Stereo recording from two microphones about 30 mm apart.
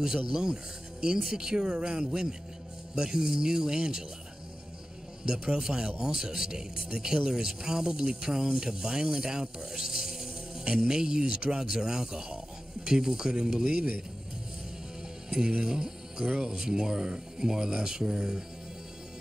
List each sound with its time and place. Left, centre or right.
0.3 s speech: right
5.2 s a man's voice: right
15.2 s mechanisms: right
15.6 s speech: right